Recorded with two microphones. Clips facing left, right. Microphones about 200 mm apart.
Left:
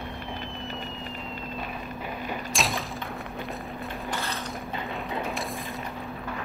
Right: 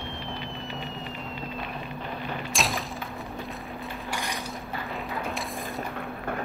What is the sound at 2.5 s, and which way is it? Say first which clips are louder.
Thump: even; centre (ahead or behind).